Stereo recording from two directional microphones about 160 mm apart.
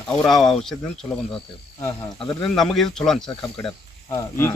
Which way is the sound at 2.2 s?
5° left (ahead or behind).